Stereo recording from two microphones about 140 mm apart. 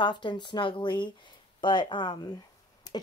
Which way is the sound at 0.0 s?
35° left (ahead or behind).